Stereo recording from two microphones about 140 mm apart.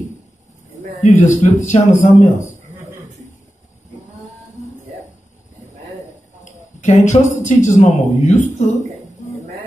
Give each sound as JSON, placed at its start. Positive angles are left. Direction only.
{"t": 1.0, "sound": "a man's voice", "side_deg": 55}
{"t": 6.4, "sound": "speech", "side_deg": 60}